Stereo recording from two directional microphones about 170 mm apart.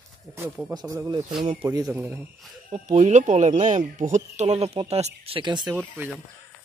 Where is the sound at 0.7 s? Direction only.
20° right (ahead or behind).